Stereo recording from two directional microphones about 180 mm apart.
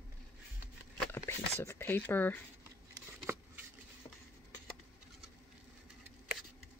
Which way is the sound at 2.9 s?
15° right (ahead or behind).